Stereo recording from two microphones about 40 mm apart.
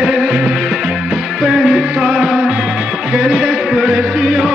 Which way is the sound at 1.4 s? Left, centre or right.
Centre.